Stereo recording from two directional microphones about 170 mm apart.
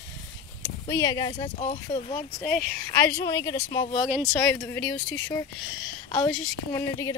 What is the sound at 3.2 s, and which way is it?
Speech, 20° left (ahead or behind).